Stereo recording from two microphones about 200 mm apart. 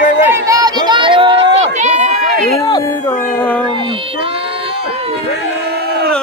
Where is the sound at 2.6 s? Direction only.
15° left (ahead or behind).